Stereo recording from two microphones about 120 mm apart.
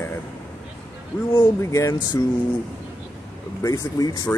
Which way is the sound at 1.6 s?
25° left (ahead or behind).